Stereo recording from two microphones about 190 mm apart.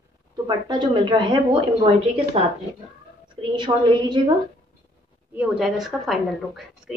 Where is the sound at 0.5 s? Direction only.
25° right (ahead or behind).